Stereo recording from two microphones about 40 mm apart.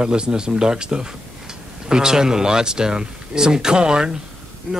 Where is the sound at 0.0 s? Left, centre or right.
Right.